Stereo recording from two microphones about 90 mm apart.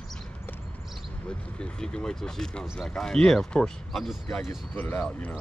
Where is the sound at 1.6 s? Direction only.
10° left (ahead or behind).